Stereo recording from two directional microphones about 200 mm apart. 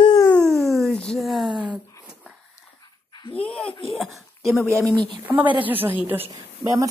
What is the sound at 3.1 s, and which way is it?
Dog, 25° left (ahead or behind).